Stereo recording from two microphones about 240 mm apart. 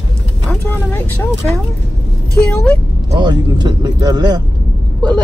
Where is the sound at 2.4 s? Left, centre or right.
Centre.